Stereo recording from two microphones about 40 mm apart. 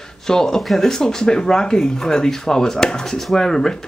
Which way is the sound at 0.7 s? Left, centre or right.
Centre.